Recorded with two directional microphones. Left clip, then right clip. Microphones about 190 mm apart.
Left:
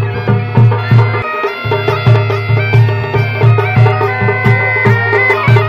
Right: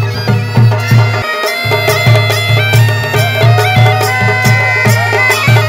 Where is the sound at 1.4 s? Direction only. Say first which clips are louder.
Right 3 dB; 50° right (ahead or behind).